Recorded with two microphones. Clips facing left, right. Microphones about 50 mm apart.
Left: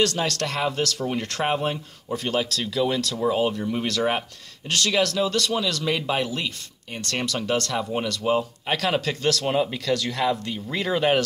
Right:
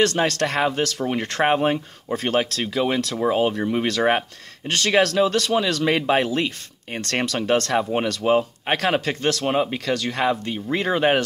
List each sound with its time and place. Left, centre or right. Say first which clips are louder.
0.0 s speech: right 4 dB; right